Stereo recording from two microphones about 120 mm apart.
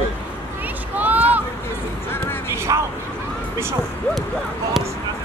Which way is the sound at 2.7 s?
30° right (ahead or behind).